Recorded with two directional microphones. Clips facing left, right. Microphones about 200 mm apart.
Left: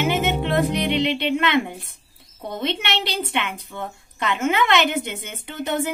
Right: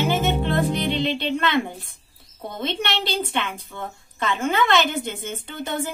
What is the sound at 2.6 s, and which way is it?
Speech, 20° left (ahead or behind).